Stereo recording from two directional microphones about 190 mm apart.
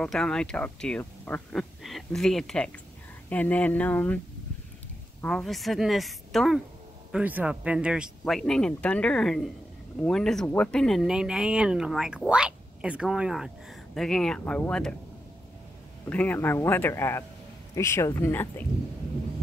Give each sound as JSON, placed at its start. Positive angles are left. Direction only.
{"t": 0.0, "sound": "a man's voice", "side_deg": 5}
{"t": 5.2, "sound": "speech", "side_deg": 0}
{"t": 16.1, "sound": "a man's voice", "side_deg": 10}